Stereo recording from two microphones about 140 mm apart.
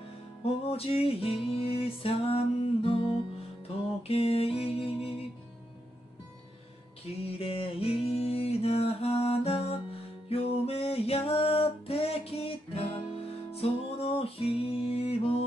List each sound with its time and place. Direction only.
0.7 s music: 45° left (ahead or behind)
7.2 s music: 40° left (ahead or behind)